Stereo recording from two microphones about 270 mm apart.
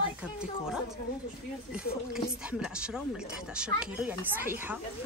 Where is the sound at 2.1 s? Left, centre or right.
Centre.